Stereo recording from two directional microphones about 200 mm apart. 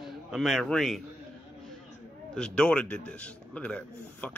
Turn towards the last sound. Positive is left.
turn(degrees=5)  # may be behind; listen again after turning